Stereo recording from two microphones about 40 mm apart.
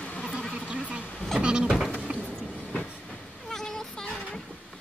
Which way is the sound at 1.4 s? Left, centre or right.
Right.